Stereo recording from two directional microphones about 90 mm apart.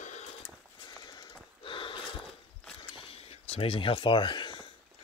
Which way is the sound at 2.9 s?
90° left.